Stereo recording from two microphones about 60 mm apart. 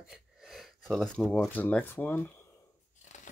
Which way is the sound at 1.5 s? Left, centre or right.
Left.